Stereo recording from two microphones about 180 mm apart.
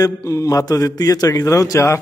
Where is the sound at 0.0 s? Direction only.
20° left (ahead or behind).